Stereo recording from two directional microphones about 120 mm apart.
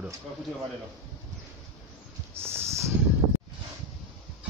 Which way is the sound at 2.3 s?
20° right (ahead or behind).